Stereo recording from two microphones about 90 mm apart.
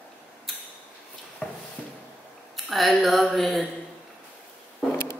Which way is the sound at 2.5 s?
Centre (ahead or behind).